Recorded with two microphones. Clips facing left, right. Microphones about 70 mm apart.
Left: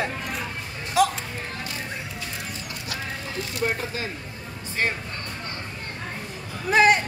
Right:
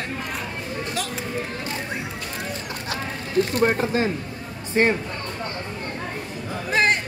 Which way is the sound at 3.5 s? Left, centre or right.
Right.